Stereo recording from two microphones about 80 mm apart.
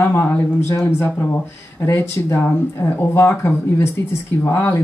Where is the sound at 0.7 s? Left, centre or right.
Left.